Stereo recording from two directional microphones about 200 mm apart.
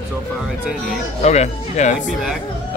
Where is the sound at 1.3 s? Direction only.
35° left (ahead or behind).